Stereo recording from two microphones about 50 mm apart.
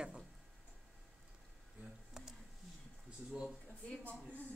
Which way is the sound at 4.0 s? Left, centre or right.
Left.